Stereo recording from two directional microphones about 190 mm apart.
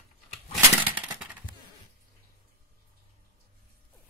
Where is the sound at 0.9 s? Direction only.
5° right (ahead or behind).